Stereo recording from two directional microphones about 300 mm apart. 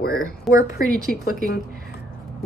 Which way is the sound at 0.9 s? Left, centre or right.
Right.